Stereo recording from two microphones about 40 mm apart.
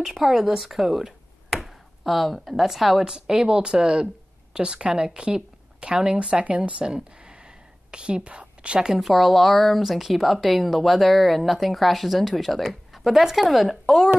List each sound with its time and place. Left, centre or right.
0.0 s a woman's voice: centre
3.1 s a woman's voice: centre
6.4 s speech: right
6.9 s a sound: right
9.0 s speech: centre